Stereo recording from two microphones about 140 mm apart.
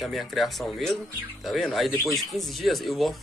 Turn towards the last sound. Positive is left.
turn(degrees=0)  # may be behind; listen again after turning